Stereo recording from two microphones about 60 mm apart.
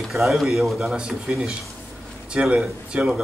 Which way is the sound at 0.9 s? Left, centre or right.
Centre.